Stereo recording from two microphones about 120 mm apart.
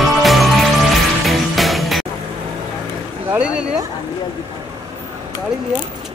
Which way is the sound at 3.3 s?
10° right (ahead or behind).